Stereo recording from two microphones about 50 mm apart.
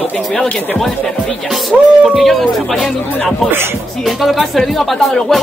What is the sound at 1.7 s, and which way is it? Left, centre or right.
Speech, centre.